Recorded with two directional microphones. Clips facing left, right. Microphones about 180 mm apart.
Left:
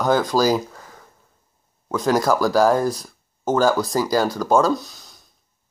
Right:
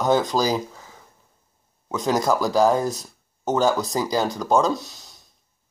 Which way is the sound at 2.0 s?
Centre (ahead or behind).